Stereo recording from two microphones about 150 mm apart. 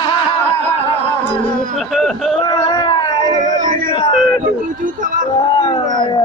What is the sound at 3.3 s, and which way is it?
Speech, 60° right (ahead or behind).